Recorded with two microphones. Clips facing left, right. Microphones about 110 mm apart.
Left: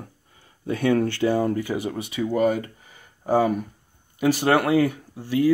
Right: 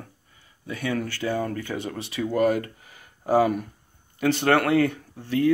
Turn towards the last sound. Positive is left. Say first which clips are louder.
# left 1 dB
turn(degrees=10)  # may be behind; listen again after turning